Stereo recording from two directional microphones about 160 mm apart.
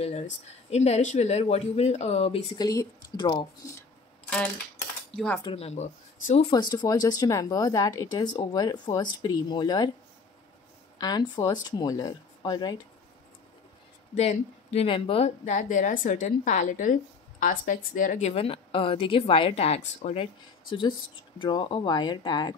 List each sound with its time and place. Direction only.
0.7 s speech: 45° left (ahead or behind)
2.5 s speech: 25° left (ahead or behind)
5.1 s speech: 5° left (ahead or behind)
5.4 s speech: 35° left (ahead or behind)
6.5 s speech: 25° left (ahead or behind)
11.0 s speech: 25° left (ahead or behind)
14.1 s speech: 45° left (ahead or behind)
18.3 s speech: 35° left (ahead or behind)
20.7 s speech: 30° left (ahead or behind)